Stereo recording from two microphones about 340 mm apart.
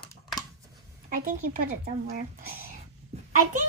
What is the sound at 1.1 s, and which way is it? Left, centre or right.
A woman's voice, right.